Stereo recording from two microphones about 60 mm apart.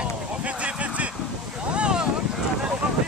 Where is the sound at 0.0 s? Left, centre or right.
Right.